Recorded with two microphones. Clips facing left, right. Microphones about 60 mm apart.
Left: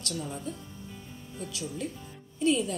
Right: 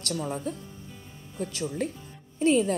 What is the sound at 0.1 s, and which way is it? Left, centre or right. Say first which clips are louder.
A woman's voice: right 6 dB; right.